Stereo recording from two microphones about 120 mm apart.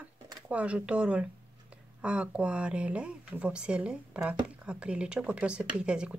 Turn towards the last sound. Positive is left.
turn(degrees=-10)  # may be behind; listen again after turning